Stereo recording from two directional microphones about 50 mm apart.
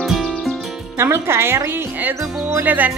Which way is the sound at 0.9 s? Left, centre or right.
Right.